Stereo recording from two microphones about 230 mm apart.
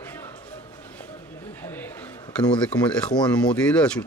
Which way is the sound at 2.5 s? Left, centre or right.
Centre.